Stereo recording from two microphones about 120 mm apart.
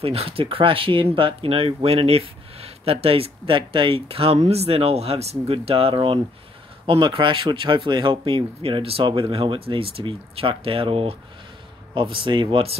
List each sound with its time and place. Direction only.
0.0 s speech: 55° right (ahead or behind)